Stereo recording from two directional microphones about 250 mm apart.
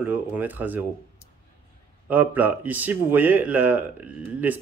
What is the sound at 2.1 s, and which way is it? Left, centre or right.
Speech, centre.